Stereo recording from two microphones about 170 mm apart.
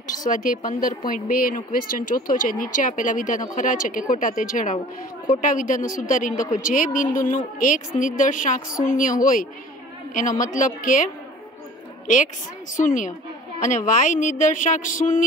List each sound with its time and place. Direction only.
0.0 s a sound: 50° left (ahead or behind)
0.7 s a woman's voice: 55° left (ahead or behind)
12.7 s a woman's voice: 50° left (ahead or behind)